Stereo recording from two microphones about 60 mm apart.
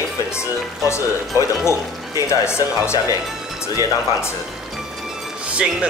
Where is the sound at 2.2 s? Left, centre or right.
Left.